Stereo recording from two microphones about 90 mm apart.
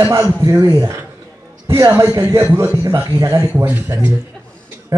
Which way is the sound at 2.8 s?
40° right (ahead or behind).